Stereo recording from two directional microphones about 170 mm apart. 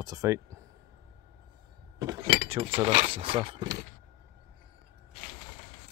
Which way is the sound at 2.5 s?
35° right (ahead or behind).